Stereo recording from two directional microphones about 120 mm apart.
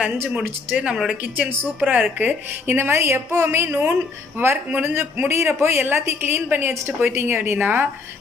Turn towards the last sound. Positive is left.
turn(degrees=-15)  # may be behind; listen again after turning